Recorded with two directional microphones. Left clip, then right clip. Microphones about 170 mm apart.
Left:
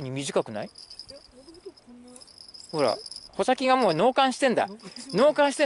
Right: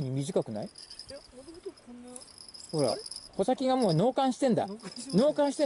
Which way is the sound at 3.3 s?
10° left (ahead or behind).